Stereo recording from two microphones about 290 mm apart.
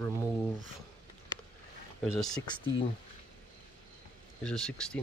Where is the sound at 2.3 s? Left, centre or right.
Centre.